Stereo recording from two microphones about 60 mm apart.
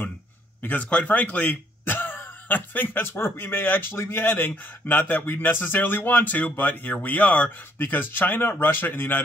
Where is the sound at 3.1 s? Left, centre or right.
Left.